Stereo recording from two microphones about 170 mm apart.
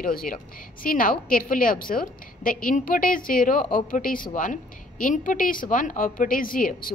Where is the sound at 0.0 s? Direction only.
60° left (ahead or behind).